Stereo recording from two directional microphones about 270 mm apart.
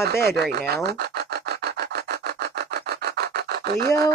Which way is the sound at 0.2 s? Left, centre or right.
Right.